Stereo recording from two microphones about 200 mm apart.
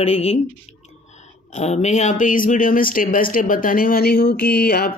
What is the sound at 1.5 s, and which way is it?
Speech, 35° left (ahead or behind).